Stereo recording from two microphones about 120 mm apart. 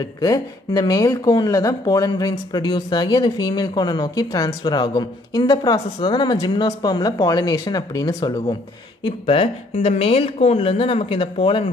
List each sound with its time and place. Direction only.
0.0 s speech: 30° left (ahead or behind)
9.0 s speech: 50° left (ahead or behind)